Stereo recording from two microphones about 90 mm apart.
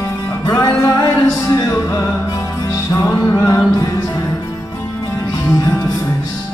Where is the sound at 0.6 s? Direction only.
35° left (ahead or behind).